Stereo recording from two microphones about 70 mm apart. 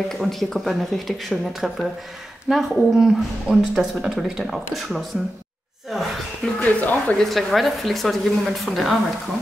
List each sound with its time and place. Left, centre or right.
0.1 s a woman's voice: centre
6.4 s speech: left
7.2 s a woman's voice: centre